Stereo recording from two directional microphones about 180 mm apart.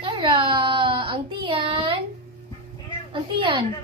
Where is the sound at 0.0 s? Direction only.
25° right (ahead or behind).